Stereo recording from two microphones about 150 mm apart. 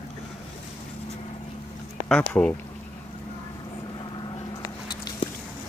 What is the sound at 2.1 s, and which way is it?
Speech, 5° left (ahead or behind).